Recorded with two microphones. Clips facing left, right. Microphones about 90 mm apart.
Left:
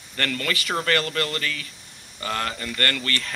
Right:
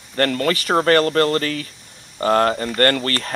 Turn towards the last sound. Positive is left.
turn(degrees=-40)  # may be behind; listen again after turning